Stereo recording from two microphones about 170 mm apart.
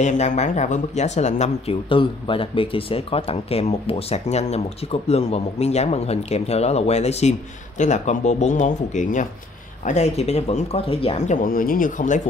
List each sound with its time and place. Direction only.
0.0 s speech: 45° left (ahead or behind)
11.4 s speech: 55° left (ahead or behind)